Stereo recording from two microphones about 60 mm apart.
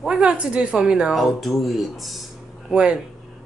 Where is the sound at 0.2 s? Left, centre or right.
Centre.